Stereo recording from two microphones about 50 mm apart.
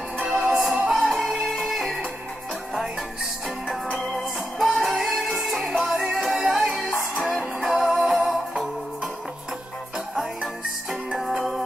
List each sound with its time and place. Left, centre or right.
0.6 s music: right
0.9 s music: centre
3.9 s music: centre
5.7 s music: centre